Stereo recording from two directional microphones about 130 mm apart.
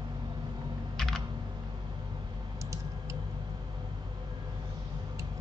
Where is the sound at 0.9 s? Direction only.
Centre (ahead or behind).